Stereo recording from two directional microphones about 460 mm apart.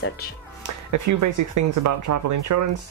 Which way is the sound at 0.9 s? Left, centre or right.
Right.